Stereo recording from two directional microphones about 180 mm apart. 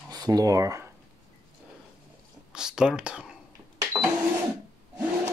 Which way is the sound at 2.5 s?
5° right (ahead or behind).